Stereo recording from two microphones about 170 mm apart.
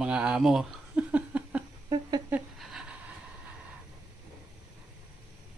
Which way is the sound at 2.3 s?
5° right (ahead or behind).